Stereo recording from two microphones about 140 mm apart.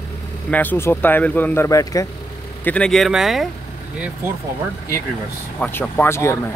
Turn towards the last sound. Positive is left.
turn(degrees=20)  # may be behind; listen again after turning